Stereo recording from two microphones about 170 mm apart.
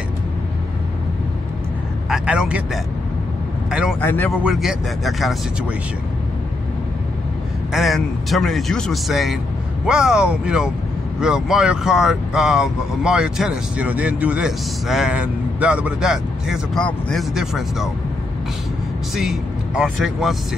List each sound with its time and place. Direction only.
2.0 s a man's voice: 5° right (ahead or behind)
4.0 s speech: 10° left (ahead or behind)
4.4 s speech: 5° right (ahead or behind)
7.7 s speech: centre (ahead or behind)
19.1 s speech: 5° right (ahead or behind)